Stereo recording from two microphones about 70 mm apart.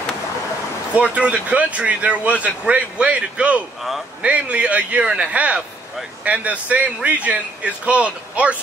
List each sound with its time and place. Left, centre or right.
0.9 s speech: centre